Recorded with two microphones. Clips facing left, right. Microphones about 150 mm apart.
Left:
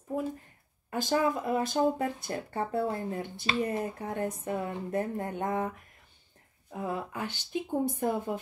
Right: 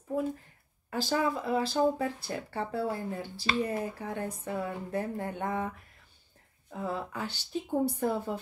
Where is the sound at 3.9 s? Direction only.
25° left (ahead or behind).